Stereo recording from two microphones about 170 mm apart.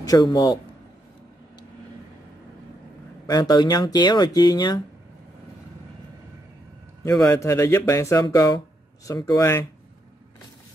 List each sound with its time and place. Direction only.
0.0 s speech: 25° left (ahead or behind)
3.3 s speech: 25° left (ahead or behind)
7.1 s speech: 20° left (ahead or behind)